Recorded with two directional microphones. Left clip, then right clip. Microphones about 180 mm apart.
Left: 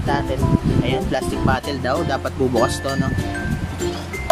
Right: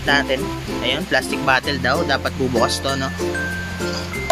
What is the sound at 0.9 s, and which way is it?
Speech, centre (ahead or behind).